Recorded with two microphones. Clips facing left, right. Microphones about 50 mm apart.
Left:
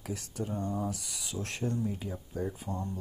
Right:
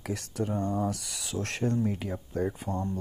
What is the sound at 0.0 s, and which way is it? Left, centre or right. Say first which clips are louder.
Speech: right 5 dB; right.